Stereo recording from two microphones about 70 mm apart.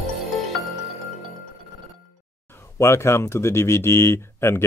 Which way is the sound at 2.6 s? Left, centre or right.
Left.